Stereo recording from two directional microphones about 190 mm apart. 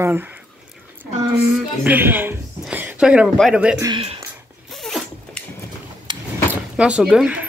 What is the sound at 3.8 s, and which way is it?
Speech, 25° right (ahead or behind).